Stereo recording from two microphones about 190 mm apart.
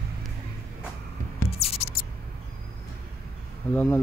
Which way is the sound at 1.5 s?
30° left (ahead or behind).